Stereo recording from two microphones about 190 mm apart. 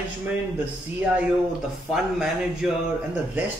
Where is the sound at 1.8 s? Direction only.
Centre (ahead or behind).